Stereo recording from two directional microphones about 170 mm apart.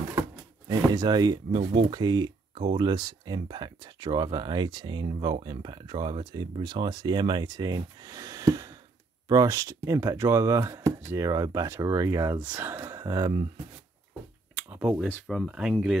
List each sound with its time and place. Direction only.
0.7 s speech: 25° right (ahead or behind)
14.5 s a sound: 10° right (ahead or behind)
15.0 s speech: 5° left (ahead or behind)